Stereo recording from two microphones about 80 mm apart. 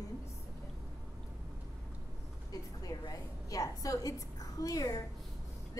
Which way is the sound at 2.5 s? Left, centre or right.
Left.